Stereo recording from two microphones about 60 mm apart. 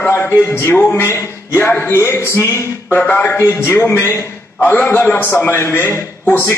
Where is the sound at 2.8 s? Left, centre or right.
Left.